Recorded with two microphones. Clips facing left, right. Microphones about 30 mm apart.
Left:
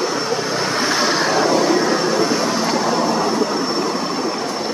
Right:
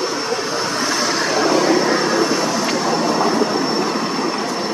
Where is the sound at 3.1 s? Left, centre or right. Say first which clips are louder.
Right 1 dB; centre.